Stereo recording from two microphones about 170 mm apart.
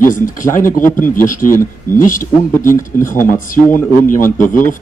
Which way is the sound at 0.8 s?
10° left (ahead or behind).